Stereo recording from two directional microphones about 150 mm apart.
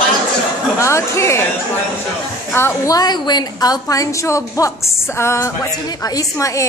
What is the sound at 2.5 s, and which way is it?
A woman's voice, 20° left (ahead or behind).